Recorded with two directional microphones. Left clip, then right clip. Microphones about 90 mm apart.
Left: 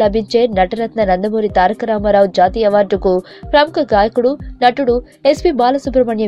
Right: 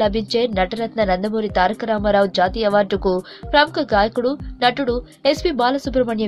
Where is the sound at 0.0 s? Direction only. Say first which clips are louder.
Left 6 dB; 40° left (ahead or behind).